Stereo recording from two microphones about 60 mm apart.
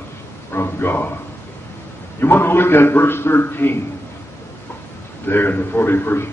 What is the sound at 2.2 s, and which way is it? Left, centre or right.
A man's voice, left.